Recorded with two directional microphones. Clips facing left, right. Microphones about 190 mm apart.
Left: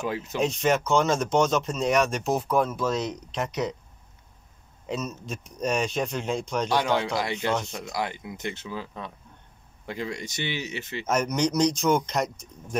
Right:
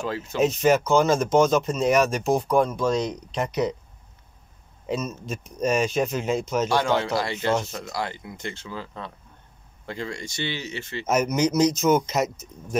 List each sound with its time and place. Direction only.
0.0 s speech: 20° left (ahead or behind)
0.4 s speech: 5° right (ahead or behind)
4.8 s speech: centre (ahead or behind)
6.7 s speech: 15° left (ahead or behind)
11.1 s speech: 5° right (ahead or behind)